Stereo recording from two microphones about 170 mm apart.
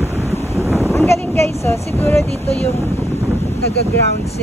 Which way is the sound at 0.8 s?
15° left (ahead or behind).